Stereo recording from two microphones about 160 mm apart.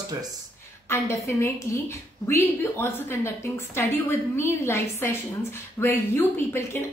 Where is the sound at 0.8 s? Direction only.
15° left (ahead or behind).